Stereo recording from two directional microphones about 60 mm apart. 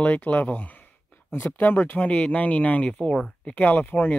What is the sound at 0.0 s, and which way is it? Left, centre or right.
Speech, left.